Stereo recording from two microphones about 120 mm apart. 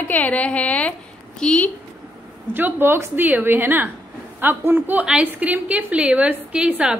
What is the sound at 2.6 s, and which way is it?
A woman's voice, 15° right (ahead or behind).